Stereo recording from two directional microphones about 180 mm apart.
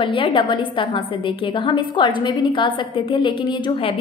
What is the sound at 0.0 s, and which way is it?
A woman's voice, 30° left (ahead or behind).